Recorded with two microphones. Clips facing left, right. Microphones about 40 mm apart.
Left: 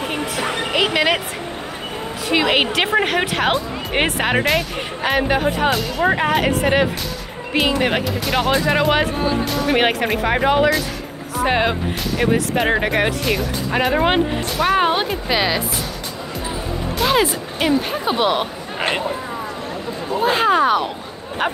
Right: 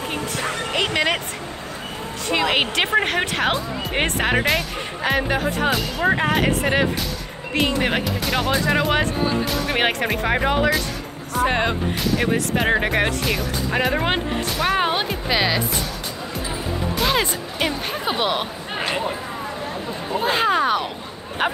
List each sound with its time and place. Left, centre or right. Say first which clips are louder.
0.7 s a woman's voice: left 4 dB; centre
2.4 s a woman's voice: left 1 dB; centre
8.5 s a woman's voice: left 3 dB; centre
9.5 s speech: left 4 dB; centre
11.4 s speech: left 3 dB; left
12.2 s speech: left 7 dB; centre
17.0 s speech: left 5 dB; centre
20.2 s speech: left 3 dB; centre